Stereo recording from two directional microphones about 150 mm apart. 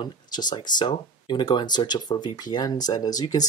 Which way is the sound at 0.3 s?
30° left (ahead or behind).